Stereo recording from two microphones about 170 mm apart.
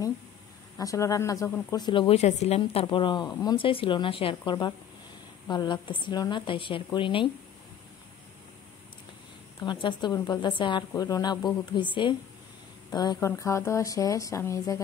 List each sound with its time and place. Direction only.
0.7 s speech: 20° left (ahead or behind)
9.6 s speech: 25° left (ahead or behind)